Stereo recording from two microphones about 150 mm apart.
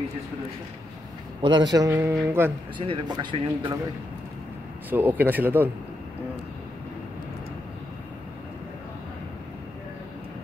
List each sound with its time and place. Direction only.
1.4 s a man's voice: 30° right (ahead or behind)
2.8 s speech: 35° right (ahead or behind)
4.8 s a man's voice: 10° right (ahead or behind)